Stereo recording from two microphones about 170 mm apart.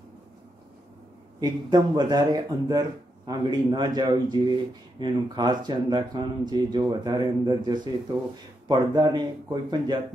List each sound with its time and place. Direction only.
1.4 s speech: 25° right (ahead or behind)